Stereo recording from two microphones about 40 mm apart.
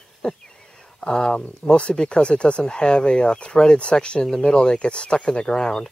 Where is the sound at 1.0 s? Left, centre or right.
Left.